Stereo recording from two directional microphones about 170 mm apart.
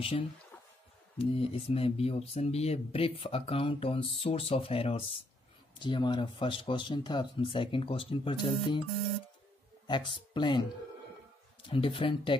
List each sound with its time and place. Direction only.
1.1 s speech: 35° left (ahead or behind)
9.8 s speech: 30° left (ahead or behind)
11.7 s speech: 30° left (ahead or behind)